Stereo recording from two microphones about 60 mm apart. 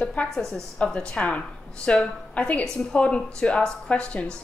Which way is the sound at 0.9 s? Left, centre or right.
Centre.